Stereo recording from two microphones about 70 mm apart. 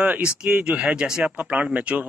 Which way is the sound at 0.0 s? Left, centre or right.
Right.